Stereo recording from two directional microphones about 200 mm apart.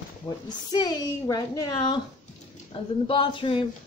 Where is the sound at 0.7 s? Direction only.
20° left (ahead or behind).